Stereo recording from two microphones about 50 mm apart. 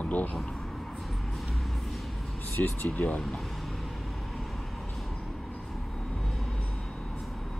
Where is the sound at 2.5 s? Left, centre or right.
Left.